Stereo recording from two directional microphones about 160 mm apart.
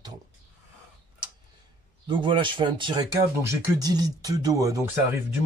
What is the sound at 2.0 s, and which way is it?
Speech, 30° right (ahead or behind).